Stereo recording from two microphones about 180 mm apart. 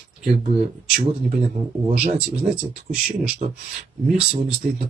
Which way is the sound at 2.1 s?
5° right (ahead or behind).